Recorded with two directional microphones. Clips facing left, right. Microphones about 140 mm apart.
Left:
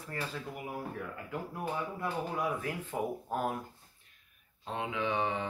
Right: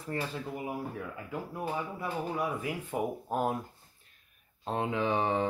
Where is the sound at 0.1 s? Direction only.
25° right (ahead or behind).